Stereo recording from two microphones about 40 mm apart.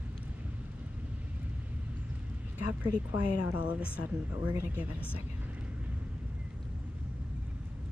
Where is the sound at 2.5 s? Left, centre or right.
Right.